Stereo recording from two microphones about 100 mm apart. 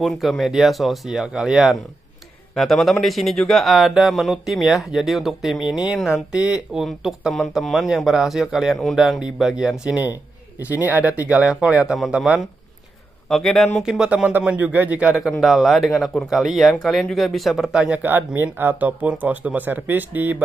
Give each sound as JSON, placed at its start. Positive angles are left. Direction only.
{"t": 0.0, "sound": "speech", "side_deg": 0}
{"t": 9.9, "sound": "speech", "side_deg": -20}
{"t": 13.3, "sound": "speech", "side_deg": 5}
{"t": 15.4, "sound": "speech", "side_deg": 0}